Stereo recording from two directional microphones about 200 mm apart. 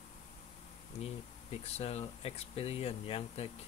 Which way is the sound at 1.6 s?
30° left (ahead or behind).